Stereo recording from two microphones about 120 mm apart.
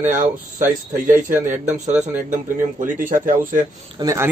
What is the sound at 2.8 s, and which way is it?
Speech, 90° right.